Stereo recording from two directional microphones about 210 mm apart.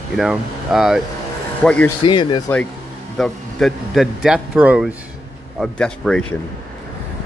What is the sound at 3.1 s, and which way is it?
Speech, centre (ahead or behind).